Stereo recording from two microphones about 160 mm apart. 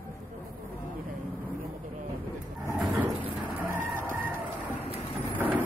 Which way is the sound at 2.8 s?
Centre (ahead or behind).